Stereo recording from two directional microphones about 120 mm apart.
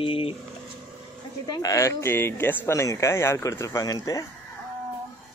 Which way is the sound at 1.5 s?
30° left (ahead or behind).